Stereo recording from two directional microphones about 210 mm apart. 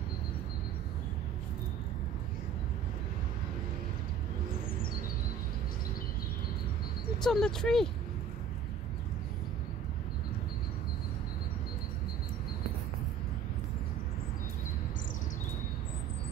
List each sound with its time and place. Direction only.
7.2 s speech: 5° left (ahead or behind)